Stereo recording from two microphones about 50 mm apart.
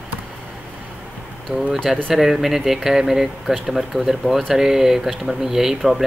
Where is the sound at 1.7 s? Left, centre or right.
Centre.